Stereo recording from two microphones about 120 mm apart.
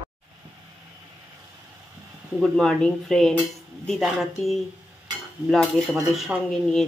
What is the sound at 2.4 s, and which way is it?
Cutlery, 5° left (ahead or behind).